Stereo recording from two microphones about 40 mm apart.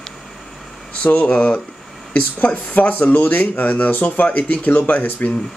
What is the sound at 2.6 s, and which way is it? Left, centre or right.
Speech, left.